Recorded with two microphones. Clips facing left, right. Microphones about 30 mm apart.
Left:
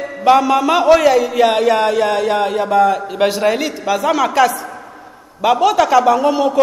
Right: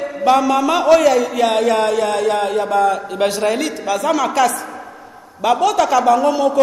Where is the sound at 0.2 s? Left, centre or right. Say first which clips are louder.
Left 2 dB; centre.